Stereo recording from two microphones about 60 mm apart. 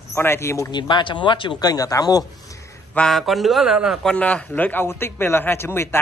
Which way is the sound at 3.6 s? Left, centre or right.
Centre.